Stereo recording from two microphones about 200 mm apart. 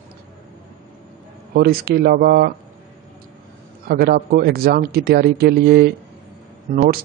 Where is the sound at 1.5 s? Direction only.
50° right (ahead or behind).